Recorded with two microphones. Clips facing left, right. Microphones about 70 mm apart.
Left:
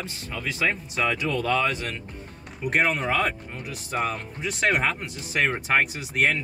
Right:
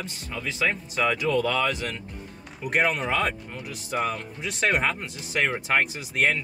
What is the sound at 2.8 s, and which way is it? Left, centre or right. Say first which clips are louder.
Speech: even; centre.